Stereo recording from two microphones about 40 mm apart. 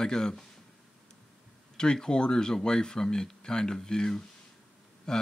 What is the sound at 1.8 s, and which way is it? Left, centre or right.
Speech, centre.